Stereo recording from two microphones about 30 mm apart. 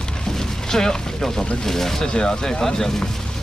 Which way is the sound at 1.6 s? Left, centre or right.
Centre.